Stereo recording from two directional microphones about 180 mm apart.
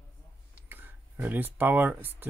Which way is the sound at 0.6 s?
10° right (ahead or behind).